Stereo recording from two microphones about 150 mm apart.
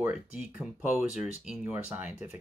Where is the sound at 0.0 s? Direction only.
5° right (ahead or behind).